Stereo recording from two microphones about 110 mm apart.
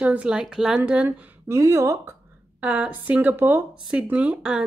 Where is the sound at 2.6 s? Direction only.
10° right (ahead or behind).